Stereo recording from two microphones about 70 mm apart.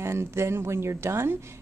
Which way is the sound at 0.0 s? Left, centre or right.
Right.